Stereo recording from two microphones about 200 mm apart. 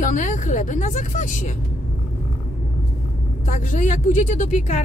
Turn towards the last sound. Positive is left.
turn(degrees=35)  # may be behind; listen again after turning